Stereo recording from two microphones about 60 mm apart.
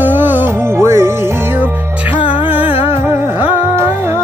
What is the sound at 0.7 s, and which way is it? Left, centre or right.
Music, right.